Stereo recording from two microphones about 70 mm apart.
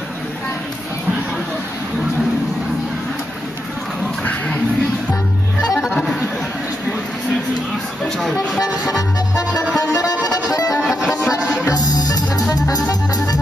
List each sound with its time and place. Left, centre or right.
5.8 s music: centre
8.0 s vehicle: centre
8.8 s music: left
10.7 s music: centre
11.7 s music: left